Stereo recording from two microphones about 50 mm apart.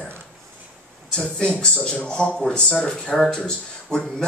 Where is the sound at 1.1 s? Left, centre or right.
Centre.